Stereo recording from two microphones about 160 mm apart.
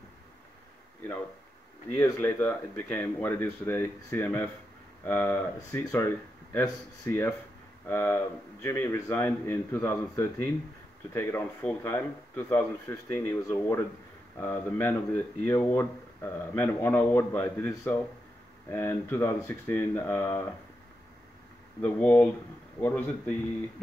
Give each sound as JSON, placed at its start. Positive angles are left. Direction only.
{"t": 2.0, "sound": "speech", "side_deg": 15}
{"t": 21.8, "sound": "speech", "side_deg": 10}